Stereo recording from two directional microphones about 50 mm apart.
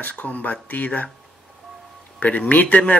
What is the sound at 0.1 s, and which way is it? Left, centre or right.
Speech, left.